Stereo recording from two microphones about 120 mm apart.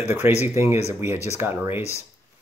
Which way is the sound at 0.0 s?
15° right (ahead or behind).